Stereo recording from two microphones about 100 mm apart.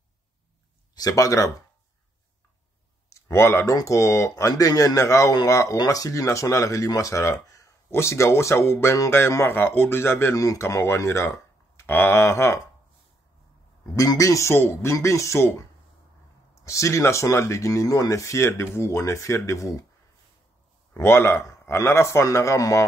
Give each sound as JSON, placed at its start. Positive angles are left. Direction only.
{"t": 0.9, "sound": "speech", "side_deg": 35}
{"t": 3.1, "sound": "clicking", "side_deg": 30}
{"t": 3.7, "sound": "speech", "side_deg": 35}
{"t": 13.9, "sound": "speech", "side_deg": 35}
{"t": 16.6, "sound": "speech", "side_deg": 30}
{"t": 20.9, "sound": "speech", "side_deg": 25}